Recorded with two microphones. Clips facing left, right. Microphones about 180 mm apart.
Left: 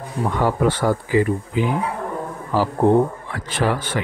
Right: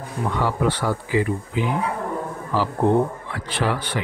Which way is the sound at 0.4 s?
45° left (ahead or behind).